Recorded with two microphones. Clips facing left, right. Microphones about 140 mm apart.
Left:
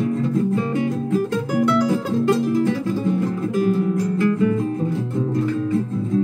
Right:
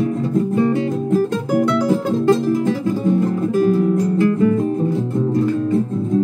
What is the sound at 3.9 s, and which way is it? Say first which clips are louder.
Music: right 3 dB; 25° right (ahead or behind).